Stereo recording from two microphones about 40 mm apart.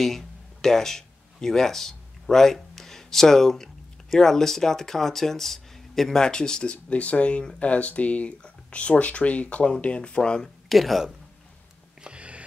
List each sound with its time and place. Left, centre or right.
0.0 s speech: centre
6.2 s speech: centre
10.7 s speech: centre
12.0 s sniff: right